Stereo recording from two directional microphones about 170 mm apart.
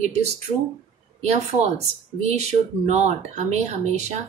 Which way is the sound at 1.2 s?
40° right (ahead or behind).